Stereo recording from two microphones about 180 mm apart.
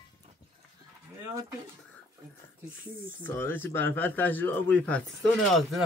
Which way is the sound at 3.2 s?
10° left (ahead or behind).